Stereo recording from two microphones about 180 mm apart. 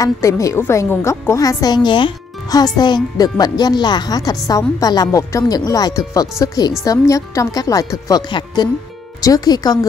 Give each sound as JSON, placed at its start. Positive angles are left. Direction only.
{"t": 0.0, "sound": "a woman's voice", "side_deg": 20}